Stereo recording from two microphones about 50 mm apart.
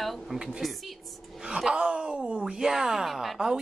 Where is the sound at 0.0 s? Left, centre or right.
Centre.